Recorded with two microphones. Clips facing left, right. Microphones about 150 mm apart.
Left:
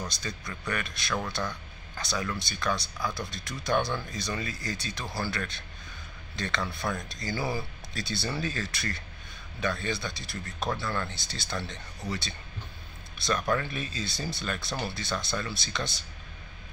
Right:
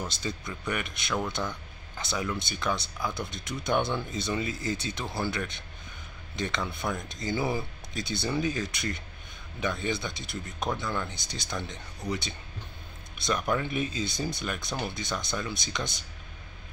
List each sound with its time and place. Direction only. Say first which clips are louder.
0.0 s speech: right 3 dB; 25° right (ahead or behind)